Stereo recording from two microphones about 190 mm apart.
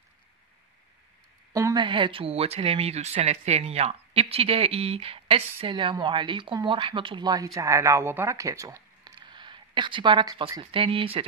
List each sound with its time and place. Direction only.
1.5 s speech: 20° right (ahead or behind)